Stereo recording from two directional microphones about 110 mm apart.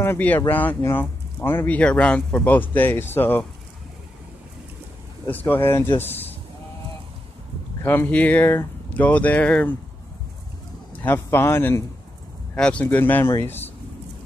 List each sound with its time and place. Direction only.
0.0 s speech: 20° left (ahead or behind)
5.2 s speech: 15° left (ahead or behind)
7.8 s speech: 20° left (ahead or behind)
11.1 s speech: 20° left (ahead or behind)
12.5 s speech: 10° left (ahead or behind)